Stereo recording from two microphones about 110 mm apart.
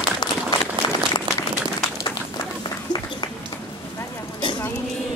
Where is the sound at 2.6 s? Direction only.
45° left (ahead or behind).